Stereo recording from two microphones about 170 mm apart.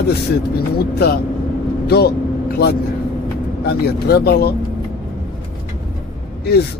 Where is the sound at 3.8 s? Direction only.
70° left (ahead or behind).